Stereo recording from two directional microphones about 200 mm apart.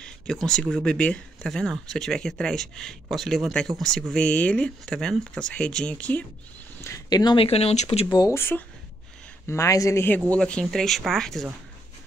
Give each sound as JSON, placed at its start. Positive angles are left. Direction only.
{"t": 0.0, "sound": "speech", "side_deg": 5}